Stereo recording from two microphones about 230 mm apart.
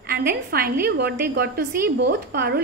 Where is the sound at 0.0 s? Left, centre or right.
Right.